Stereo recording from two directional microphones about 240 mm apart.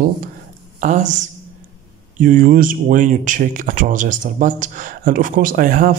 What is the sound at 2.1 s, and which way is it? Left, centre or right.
Speech, right.